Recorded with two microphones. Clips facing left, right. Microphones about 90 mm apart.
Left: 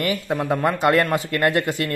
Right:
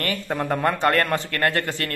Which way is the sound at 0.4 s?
10° left (ahead or behind).